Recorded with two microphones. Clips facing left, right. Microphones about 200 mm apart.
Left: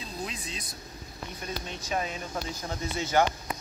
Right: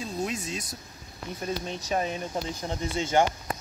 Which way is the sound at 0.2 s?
45° right (ahead or behind).